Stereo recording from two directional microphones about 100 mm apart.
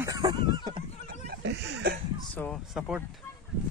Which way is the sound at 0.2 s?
55° right (ahead or behind).